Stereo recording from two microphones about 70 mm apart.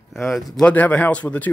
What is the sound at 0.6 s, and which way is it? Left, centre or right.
Speech, left.